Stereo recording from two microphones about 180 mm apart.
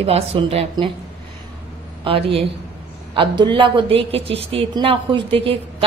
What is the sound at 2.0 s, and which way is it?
A woman's voice, 30° right (ahead or behind).